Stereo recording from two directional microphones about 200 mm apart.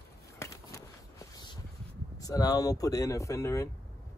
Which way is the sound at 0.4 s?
15° left (ahead or behind).